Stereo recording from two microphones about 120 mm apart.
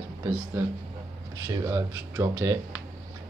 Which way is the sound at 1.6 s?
25° right (ahead or behind).